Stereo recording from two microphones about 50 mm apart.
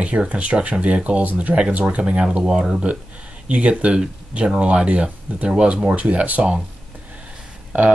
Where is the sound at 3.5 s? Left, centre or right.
Right.